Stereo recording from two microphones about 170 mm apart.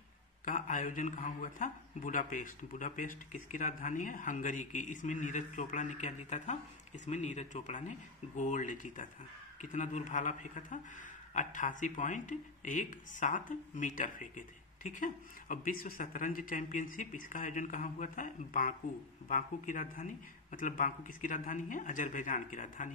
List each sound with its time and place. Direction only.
0.5 s speech: 50° left (ahead or behind)